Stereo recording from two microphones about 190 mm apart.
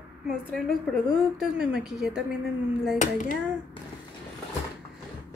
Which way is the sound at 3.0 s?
40° left (ahead or behind).